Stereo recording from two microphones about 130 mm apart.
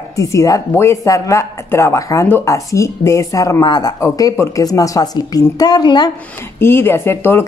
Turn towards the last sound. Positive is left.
turn(degrees=20)  # may be behind; listen again after turning